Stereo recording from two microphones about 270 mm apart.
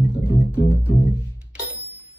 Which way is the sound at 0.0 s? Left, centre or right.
Centre.